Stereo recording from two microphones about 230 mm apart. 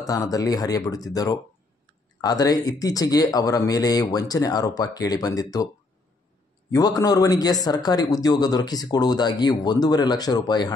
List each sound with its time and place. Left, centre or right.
0.0 s speech: centre
6.7 s speech: centre